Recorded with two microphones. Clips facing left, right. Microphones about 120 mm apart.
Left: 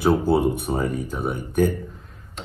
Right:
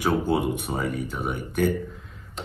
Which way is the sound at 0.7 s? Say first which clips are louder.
Left 4 dB; 30° left (ahead or behind).